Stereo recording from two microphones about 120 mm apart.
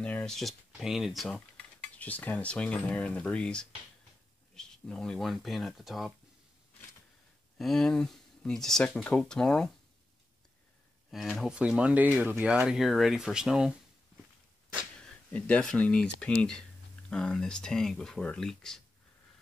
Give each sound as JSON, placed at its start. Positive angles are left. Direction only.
{"t": 0.0, "sound": "speech", "side_deg": 10}
{"t": 1.6, "sound": "cutlery", "side_deg": 10}
{"t": 4.6, "sound": "speech", "side_deg": 5}
{"t": 7.5, "sound": "speech", "side_deg": 5}
{"t": 11.1, "sound": "speech", "side_deg": 0}
{"t": 15.3, "sound": "speech", "side_deg": 10}